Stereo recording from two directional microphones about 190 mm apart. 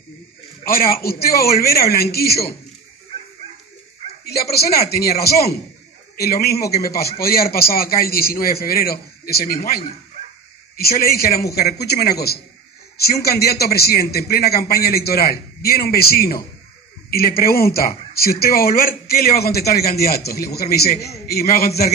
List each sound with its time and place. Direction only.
0.7 s speech: 50° left (ahead or behind)
4.2 s speech: 55° left (ahead or behind)
6.1 s a man's voice: 55° left (ahead or behind)